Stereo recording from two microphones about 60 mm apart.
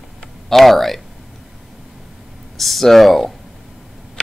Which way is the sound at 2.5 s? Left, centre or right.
Centre.